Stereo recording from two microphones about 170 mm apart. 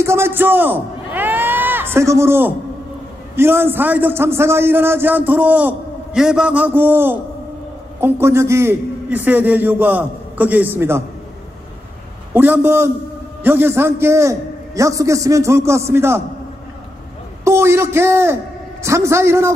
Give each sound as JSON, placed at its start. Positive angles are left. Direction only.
{"t": 0.0, "sound": "a man's voice", "side_deg": -15}
{"t": 12.4, "sound": "a man's voice", "side_deg": -10}
{"t": 17.5, "sound": "a man's voice", "side_deg": -15}